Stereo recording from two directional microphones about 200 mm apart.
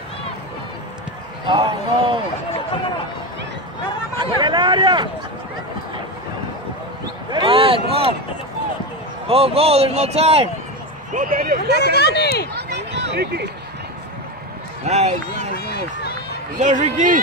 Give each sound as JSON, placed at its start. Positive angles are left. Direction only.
{"t": 1.4, "sound": "speech", "side_deg": -25}
{"t": 4.2, "sound": "speech", "side_deg": -20}
{"t": 7.2, "sound": "speech", "side_deg": -25}
{"t": 9.3, "sound": "speech", "side_deg": -30}
{"t": 11.1, "sound": "speech", "side_deg": -40}
{"t": 11.7, "sound": "speech", "side_deg": 55}
{"t": 12.5, "sound": "a sound", "side_deg": -55}
{"t": 14.9, "sound": "speech", "side_deg": -35}
{"t": 15.5, "sound": "run", "side_deg": 50}
{"t": 16.5, "sound": "speech", "side_deg": -40}